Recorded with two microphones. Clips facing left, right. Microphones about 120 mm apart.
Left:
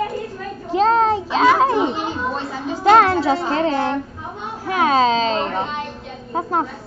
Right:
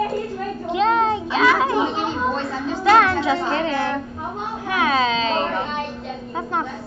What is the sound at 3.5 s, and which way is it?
A woman's voice, 35° left (ahead or behind).